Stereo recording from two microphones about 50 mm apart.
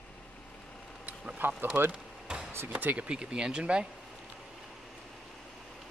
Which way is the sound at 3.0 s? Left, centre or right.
Centre.